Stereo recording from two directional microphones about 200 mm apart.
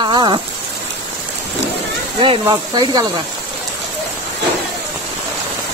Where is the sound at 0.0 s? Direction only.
20° right (ahead or behind).